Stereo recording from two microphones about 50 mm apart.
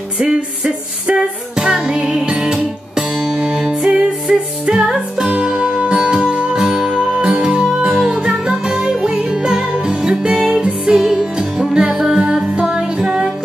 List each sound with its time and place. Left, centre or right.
0.2 s music: centre